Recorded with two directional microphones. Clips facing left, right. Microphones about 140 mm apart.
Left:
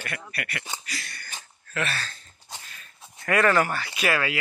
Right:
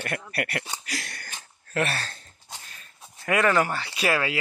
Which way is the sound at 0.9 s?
90° right.